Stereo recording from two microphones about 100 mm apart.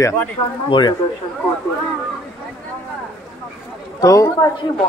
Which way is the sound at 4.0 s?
35° left (ahead or behind).